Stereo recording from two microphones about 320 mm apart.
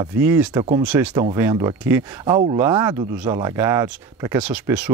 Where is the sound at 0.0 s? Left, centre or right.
Centre.